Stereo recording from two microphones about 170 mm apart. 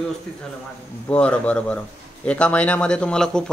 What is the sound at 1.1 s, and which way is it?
A man's voice, 5° left (ahead or behind).